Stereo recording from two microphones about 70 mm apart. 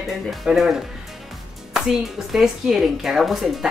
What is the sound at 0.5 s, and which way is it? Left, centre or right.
Speech, centre.